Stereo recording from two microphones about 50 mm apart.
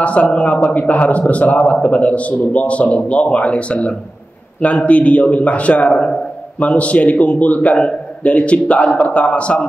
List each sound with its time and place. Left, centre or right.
0.0 s a man's voice: left